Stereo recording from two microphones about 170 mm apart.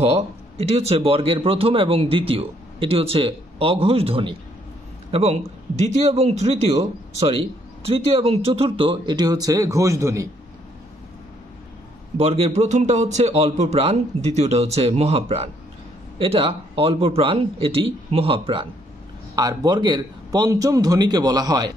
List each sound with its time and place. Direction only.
0.0 s a man's voice: 35° right (ahead or behind); by 10.2 s 15° right (ahead or behind)
12.2 s a man's voice: 35° right (ahead or behind); by 21.7 s 20° right (ahead or behind)